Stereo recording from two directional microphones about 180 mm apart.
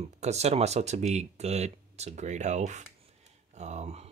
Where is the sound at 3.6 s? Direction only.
40° right (ahead or behind).